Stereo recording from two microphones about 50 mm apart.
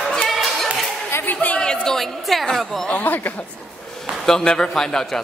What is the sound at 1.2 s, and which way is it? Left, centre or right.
Chatter, left.